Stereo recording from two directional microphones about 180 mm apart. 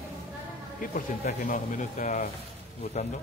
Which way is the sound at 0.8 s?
50° left (ahead or behind).